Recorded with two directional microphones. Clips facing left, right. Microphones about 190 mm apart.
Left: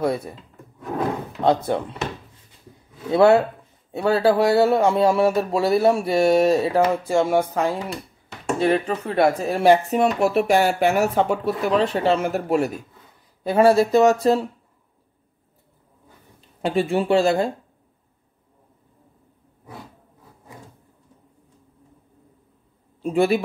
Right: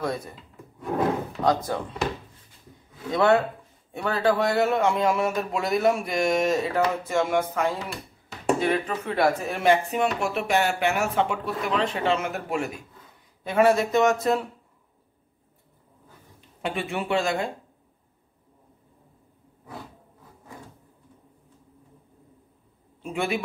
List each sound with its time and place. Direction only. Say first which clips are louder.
0.0 s speech: left 6 dB; 30° left (ahead or behind)
1.4 s speech: left 5 dB; 30° left (ahead or behind)
3.1 s speech: left 6 dB; 30° left (ahead or behind)
8.5 s speech: left 5 dB; 30° left (ahead or behind)
16.6 s speech: left 8 dB; 35° left (ahead or behind)
23.0 s speech: left 9 dB; 35° left (ahead or behind)